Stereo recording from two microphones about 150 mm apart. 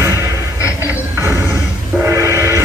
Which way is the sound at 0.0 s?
20° right (ahead or behind).